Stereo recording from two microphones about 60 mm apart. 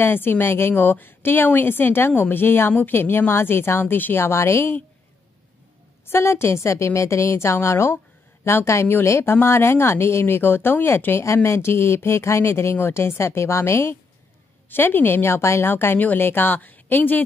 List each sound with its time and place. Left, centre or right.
0.0 s a woman's voice: left
6.0 s a woman's voice: left
14.7 s a woman's voice: left